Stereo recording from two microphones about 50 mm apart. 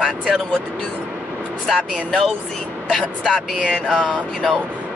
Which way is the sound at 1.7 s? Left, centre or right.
Centre.